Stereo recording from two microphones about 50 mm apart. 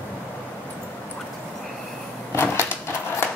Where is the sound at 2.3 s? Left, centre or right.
Left.